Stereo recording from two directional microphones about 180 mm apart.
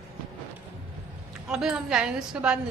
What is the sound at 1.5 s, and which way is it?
A woman's voice, centre (ahead or behind).